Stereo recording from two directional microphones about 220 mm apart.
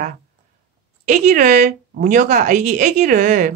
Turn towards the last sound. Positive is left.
turn(degrees=-40)  # may be behind; listen again after turning